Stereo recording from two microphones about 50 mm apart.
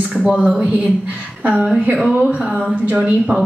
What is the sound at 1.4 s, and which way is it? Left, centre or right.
Speech, right.